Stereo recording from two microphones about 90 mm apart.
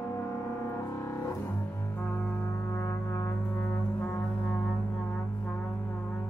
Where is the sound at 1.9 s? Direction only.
20° left (ahead or behind).